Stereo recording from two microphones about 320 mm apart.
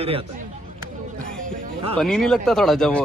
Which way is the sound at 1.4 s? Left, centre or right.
Right.